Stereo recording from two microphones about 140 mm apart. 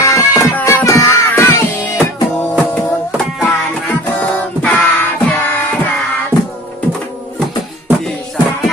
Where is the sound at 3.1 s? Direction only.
Centre (ahead or behind).